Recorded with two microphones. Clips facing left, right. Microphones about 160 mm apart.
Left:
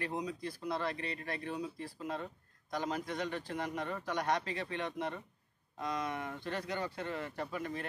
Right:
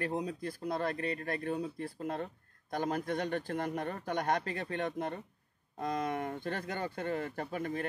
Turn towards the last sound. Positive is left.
turn(degrees=-50)  # may be behind; listen again after turning